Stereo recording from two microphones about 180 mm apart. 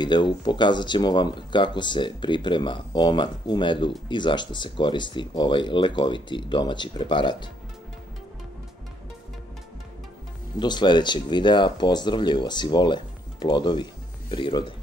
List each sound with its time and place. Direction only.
0.0 s speech: 25° left (ahead or behind)
10.6 s speech: 25° left (ahead or behind)